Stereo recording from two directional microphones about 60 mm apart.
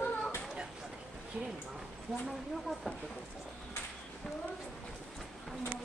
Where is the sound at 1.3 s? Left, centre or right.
Right.